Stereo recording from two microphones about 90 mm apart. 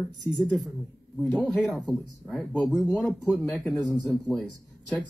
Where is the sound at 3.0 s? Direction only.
Centre (ahead or behind).